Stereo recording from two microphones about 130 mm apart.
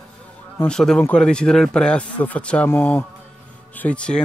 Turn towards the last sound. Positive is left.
turn(degrees=10)  # may be behind; listen again after turning